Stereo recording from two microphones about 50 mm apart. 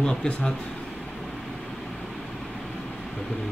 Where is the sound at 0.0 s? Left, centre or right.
Centre.